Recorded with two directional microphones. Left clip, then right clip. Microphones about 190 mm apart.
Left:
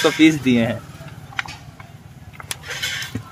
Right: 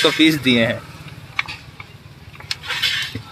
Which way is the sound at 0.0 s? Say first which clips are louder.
Even; 5° left (ahead or behind).